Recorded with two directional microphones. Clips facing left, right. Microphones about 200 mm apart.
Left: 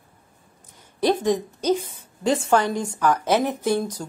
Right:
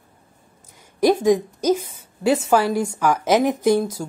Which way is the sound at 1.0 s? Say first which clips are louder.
Right 4 dB; 10° right (ahead or behind).